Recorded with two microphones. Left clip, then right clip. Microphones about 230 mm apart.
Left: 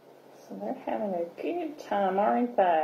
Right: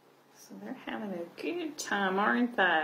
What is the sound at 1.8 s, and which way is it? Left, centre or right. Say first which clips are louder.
Speech: left 3 dB; right.